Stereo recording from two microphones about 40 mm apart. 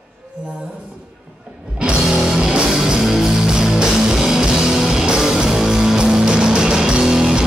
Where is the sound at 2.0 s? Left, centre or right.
Centre.